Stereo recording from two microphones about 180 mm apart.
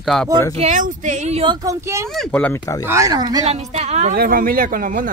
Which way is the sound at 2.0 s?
Centre (ahead or behind).